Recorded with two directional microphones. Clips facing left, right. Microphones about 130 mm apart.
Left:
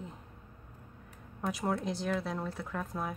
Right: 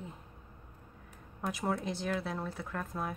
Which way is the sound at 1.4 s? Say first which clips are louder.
Left 1 dB; centre (ahead or behind).